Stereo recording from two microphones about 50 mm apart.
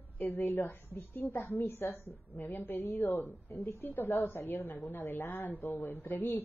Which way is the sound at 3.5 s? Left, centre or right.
Left.